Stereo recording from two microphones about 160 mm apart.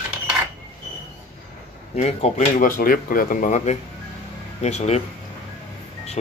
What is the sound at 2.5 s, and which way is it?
Speech, 60° left (ahead or behind).